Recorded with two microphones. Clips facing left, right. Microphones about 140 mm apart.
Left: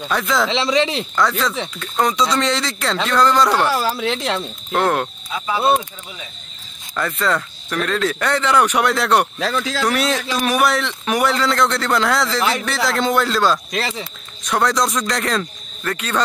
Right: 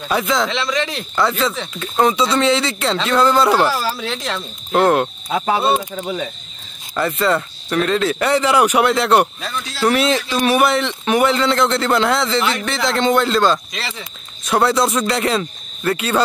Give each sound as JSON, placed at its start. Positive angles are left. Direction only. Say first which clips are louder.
{"t": 0.1, "sound": "speech", "louder": "right 1 dB", "side_deg": 0}
{"t": 4.1, "sound": "speech", "louder": "left 3 dB", "side_deg": 15}
{"t": 4.7, "sound": "speech", "louder": "right 4 dB", "side_deg": -5}
{"t": 5.3, "sound": "cricket", "louder": "right 1 dB", "side_deg": -55}
{"t": 7.0, "sound": "speech", "louder": "right 3 dB", "side_deg": -5}
{"t": 9.4, "sound": "speech", "louder": "left 6 dB", "side_deg": 90}
{"t": 9.8, "sound": "speech", "louder": "right 7 dB", "side_deg": 0}
{"t": 13.7, "sound": "speech", "louder": "left 5 dB", "side_deg": 40}
{"t": 14.4, "sound": "speech", "louder": "right 3 dB", "side_deg": -5}